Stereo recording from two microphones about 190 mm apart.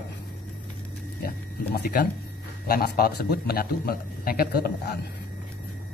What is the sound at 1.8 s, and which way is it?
A man's voice, 50° left (ahead or behind).